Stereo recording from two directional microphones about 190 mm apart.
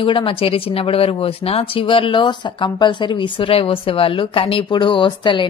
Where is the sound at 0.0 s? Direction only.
25° left (ahead or behind).